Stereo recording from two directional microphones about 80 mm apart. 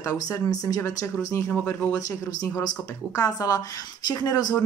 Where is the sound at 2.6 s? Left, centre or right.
Left.